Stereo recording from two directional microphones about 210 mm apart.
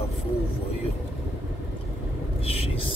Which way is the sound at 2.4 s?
25° left (ahead or behind).